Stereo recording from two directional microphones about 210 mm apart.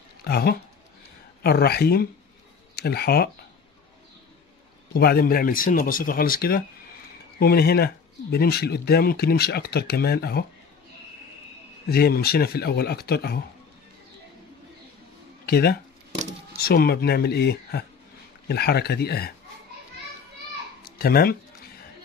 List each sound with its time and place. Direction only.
0.2 s speech: 50° left (ahead or behind)
4.9 s speech: 45° left (ahead or behind)
11.9 s speech: 45° left (ahead or behind)
15.4 s speech: 50° left (ahead or behind)
20.8 s speech: 45° left (ahead or behind)